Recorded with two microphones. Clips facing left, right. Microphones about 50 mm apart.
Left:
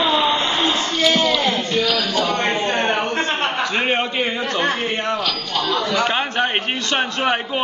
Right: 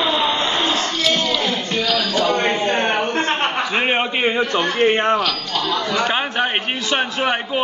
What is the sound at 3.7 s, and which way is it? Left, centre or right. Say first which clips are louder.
A man's voice: right 1 dB; centre.